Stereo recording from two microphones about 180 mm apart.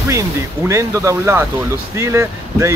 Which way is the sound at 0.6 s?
15° right (ahead or behind).